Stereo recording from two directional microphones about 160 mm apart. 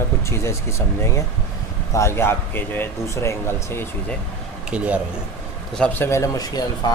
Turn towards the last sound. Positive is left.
turn(degrees=25)  # may be behind; listen again after turning